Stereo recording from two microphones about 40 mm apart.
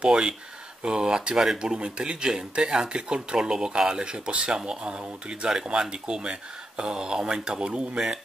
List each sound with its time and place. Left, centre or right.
0.0 s speech: centre